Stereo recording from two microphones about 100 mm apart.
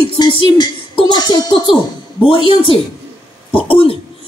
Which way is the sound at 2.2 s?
60° left (ahead or behind).